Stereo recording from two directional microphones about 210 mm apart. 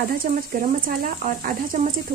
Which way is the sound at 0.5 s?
40° right (ahead or behind).